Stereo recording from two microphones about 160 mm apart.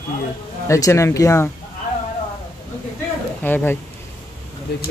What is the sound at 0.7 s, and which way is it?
Speech, 20° left (ahead or behind).